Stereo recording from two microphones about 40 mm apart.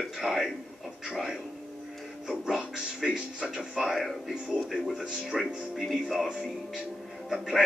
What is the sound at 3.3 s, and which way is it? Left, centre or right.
Speech, right.